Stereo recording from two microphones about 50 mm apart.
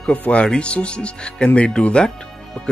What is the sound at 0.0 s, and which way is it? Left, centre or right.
Speech, left.